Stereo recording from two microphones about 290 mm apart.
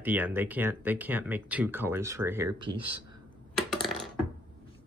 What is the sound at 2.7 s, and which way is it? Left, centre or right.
Speech, right.